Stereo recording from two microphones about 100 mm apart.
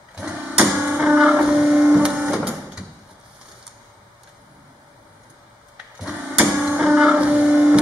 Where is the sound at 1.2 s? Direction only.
10° right (ahead or behind).